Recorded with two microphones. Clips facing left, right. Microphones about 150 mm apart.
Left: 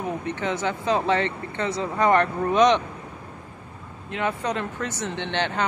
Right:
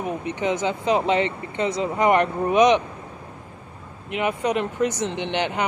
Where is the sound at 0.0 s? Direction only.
15° right (ahead or behind).